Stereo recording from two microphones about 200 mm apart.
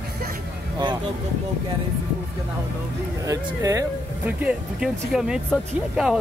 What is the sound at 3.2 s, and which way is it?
Speech, 15° right (ahead or behind).